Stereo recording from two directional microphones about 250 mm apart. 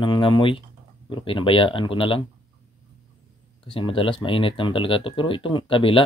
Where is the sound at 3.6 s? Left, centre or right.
Left.